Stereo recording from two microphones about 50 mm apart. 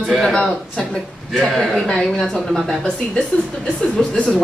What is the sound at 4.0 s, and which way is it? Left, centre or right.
Speech, centre.